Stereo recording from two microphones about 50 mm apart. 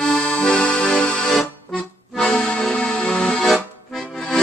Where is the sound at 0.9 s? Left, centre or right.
Centre.